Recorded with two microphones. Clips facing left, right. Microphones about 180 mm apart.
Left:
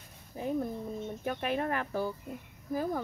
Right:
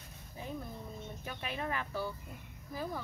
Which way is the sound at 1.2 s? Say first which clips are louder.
Left 8 dB; 55° left (ahead or behind).